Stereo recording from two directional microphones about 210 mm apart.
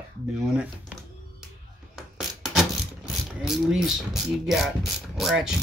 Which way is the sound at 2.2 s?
Centre (ahead or behind).